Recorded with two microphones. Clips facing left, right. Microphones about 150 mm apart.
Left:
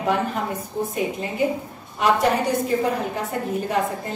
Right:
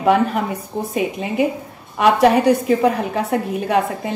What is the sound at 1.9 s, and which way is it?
A woman's voice, 70° right (ahead or behind).